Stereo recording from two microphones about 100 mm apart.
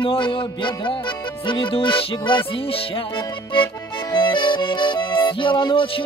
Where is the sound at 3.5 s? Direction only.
50° left (ahead or behind).